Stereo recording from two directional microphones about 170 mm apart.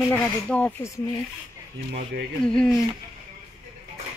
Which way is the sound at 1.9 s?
60° right (ahead or behind).